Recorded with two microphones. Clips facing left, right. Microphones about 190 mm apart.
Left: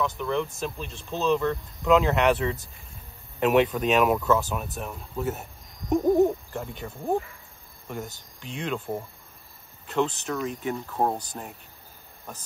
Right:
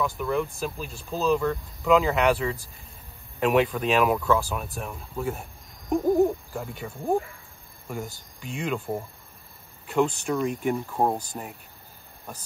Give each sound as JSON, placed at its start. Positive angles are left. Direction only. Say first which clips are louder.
{"t": 0.0, "sound": "speech", "louder": "right 1 dB", "side_deg": -5}
{"t": 8.4, "sound": "speech", "louder": "right 1 dB", "side_deg": -5}